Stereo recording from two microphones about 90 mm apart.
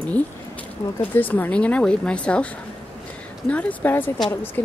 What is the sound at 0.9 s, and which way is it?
Speech, 20° left (ahead or behind).